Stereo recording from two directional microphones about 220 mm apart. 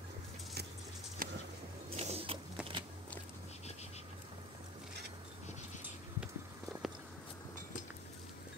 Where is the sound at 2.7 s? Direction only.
20° right (ahead or behind).